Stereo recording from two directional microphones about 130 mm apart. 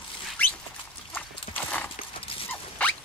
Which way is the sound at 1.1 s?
10° left (ahead or behind).